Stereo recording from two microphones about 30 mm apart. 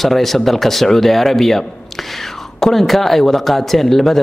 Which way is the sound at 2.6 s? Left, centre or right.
Centre.